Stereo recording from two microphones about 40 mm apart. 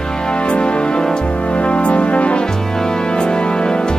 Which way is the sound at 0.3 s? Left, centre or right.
Left.